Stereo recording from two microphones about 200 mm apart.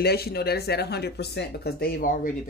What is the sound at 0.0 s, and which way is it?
Speech, 50° left (ahead or behind).